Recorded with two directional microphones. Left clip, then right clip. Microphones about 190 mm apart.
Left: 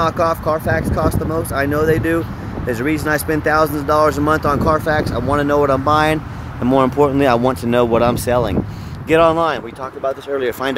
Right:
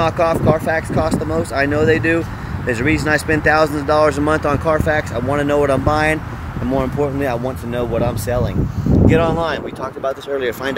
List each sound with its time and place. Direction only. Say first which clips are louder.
0.0 s speech: right 1 dB; 5° left (ahead or behind)
6.7 s speech: left 5 dB; 45° left (ahead or behind)